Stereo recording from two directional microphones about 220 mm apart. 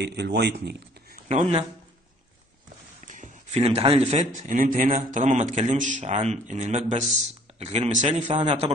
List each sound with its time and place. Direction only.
0.0 s speech: 50° right (ahead or behind)
1.3 s a man's voice: 30° right (ahead or behind)
3.1 s a man's voice: 30° right (ahead or behind)